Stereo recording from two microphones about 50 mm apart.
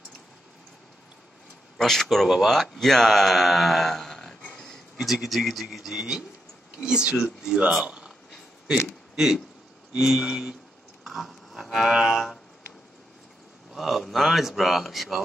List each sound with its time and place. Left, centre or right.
1.8 s speech: centre
4.5 s a sound: centre
4.9 s speech: centre
9.1 s speech: centre
11.1 s livestock: centre
13.7 s speech: centre